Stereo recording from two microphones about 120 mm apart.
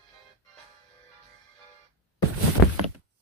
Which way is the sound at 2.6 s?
5° left (ahead or behind).